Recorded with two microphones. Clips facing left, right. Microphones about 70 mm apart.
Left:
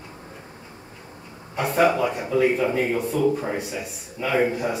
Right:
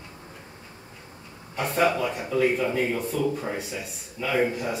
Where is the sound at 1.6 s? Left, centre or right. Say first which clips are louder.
Left 4 dB; centre.